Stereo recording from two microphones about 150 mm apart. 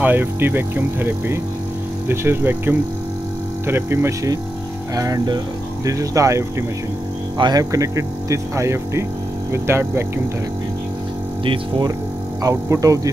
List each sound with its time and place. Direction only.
0.0 s speech: 15° right (ahead or behind)
11.4 s speech: 35° right (ahead or behind)
12.4 s speech: 20° right (ahead or behind)